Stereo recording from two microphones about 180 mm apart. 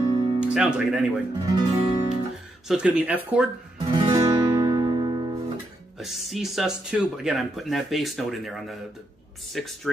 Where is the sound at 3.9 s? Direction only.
20° right (ahead or behind).